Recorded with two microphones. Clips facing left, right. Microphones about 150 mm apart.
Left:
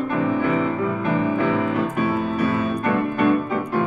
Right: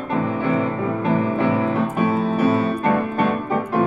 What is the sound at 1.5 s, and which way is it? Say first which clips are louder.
Music: right 1 dB; 30° right (ahead or behind).